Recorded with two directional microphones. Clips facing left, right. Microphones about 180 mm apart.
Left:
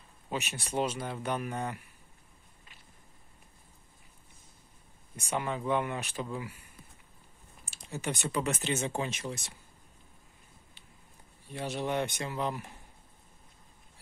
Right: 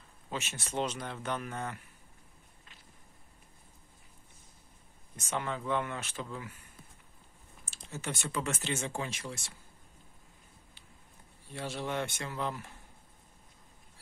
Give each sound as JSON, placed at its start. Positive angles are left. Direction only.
{"t": 0.3, "sound": "speech", "side_deg": 15}
{"t": 5.2, "sound": "speech", "side_deg": 15}
{"t": 7.6, "sound": "speech", "side_deg": 15}
{"t": 11.5, "sound": "speech", "side_deg": 15}